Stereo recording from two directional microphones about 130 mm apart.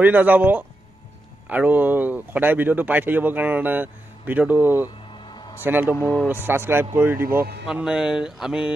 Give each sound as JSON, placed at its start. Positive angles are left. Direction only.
{"t": 0.0, "sound": "speech", "side_deg": -10}
{"t": 4.8, "sound": "music", "side_deg": 35}
{"t": 5.6, "sound": "speech", "side_deg": -15}
{"t": 5.9, "sound": "speech", "side_deg": 15}
{"t": 6.2, "sound": "speech", "side_deg": -15}
{"t": 7.6, "sound": "speech", "side_deg": -5}